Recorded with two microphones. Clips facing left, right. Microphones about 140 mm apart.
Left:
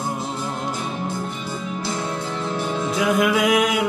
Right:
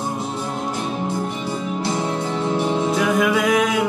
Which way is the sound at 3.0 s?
5° left (ahead or behind).